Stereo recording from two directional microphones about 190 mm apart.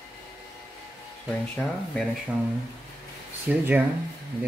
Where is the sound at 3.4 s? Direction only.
10° right (ahead or behind).